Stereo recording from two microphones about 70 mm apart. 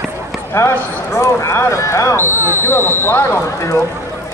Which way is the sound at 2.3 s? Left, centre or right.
Right.